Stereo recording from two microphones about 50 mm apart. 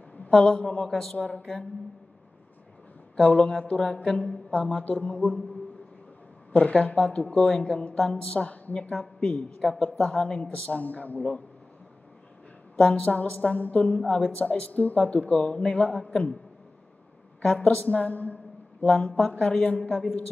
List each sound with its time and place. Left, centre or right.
0.3 s speech: centre
3.2 s speech: left
6.5 s speech: left
8.9 s a woman's voice: centre
9.9 s speech: left
12.7 s speech: left
14.0 s speech: centre
14.4 s speech: left
17.6 s a man's voice: left
19.9 s a woman's voice: left